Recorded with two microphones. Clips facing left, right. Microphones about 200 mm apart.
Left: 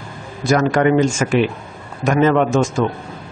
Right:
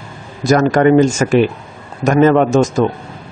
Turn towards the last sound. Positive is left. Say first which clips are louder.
# right 4 dB
turn(degrees=-40)  # may be behind; listen again after turning